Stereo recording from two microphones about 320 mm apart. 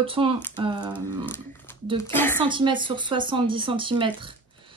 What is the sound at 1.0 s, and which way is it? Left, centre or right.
A woman's voice, centre.